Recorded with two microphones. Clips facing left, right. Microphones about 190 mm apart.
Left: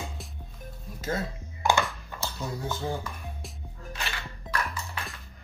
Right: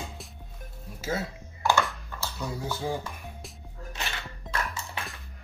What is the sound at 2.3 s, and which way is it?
Speech, 5° right (ahead or behind).